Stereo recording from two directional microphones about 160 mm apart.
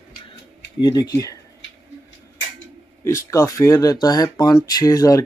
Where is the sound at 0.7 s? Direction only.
25° left (ahead or behind).